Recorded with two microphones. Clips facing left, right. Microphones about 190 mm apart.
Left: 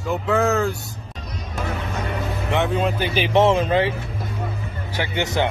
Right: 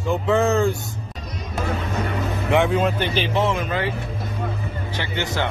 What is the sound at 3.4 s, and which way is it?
Speech, 25° left (ahead or behind).